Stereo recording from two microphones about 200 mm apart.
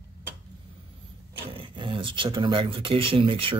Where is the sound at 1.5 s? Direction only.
25° right (ahead or behind).